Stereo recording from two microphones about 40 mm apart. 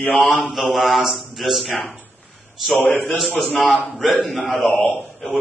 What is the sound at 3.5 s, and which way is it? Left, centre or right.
Speech, centre.